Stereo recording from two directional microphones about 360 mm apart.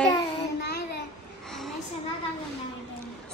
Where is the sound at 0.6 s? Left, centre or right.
Left.